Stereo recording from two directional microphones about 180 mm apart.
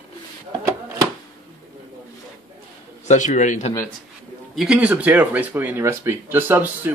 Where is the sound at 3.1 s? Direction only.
45° left (ahead or behind).